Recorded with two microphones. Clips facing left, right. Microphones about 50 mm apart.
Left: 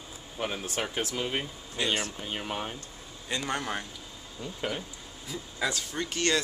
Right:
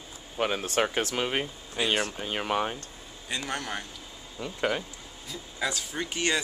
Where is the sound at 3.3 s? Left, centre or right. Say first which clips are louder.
Left 1 dB; centre.